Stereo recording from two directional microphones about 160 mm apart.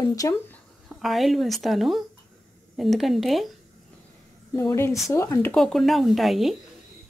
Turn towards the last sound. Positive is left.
turn(degrees=0)  # may be behind; listen again after turning